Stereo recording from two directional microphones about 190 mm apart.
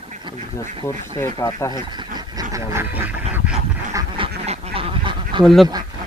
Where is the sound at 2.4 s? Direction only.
20° right (ahead or behind).